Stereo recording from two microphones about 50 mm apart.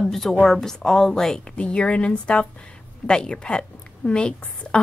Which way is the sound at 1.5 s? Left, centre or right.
Left.